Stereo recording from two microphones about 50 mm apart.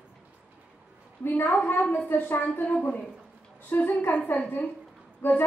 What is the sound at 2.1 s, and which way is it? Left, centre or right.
Speech, left.